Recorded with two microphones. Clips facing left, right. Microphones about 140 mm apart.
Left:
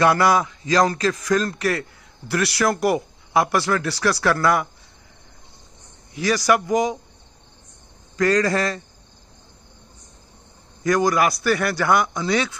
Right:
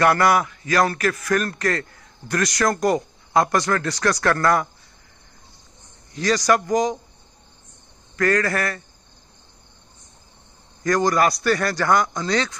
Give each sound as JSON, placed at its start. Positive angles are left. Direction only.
{"t": 0.0, "sound": "a man's voice", "side_deg": 15}
{"t": 6.1, "sound": "a man's voice", "side_deg": 10}
{"t": 8.2, "sound": "a man's voice", "side_deg": 15}
{"t": 10.8, "sound": "a man's voice", "side_deg": 10}